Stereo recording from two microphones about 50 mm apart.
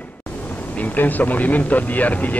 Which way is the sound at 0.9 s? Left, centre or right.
Left.